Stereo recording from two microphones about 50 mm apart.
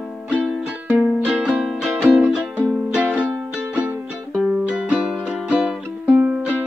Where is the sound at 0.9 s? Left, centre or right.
Right.